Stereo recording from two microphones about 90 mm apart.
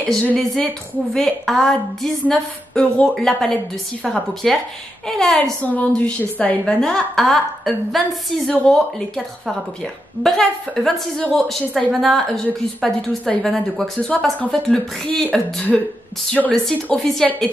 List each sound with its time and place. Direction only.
0.1 s a woman's voice: 10° left (ahead or behind)
5.6 s a woman's voice: 15° left (ahead or behind)
10.2 s a woman's voice: 5° left (ahead or behind)